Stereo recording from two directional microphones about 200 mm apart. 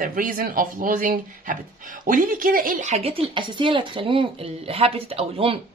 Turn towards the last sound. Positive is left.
turn(degrees=-30)  # may be behind; listen again after turning